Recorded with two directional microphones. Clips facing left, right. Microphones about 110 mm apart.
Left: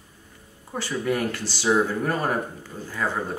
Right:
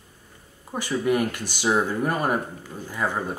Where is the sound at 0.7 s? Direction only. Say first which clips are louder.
Right 3 dB; 15° right (ahead or behind).